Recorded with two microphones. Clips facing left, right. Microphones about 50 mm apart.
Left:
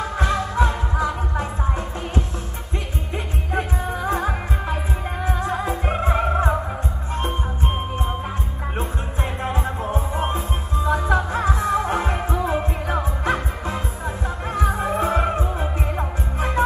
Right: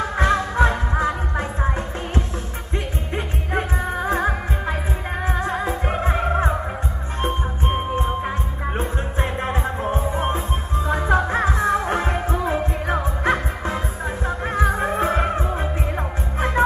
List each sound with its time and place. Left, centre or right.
0.2 s music: right
3.5 s music: right